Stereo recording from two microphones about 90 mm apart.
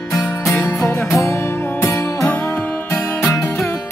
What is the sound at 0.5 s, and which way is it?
Music, 30° left (ahead or behind).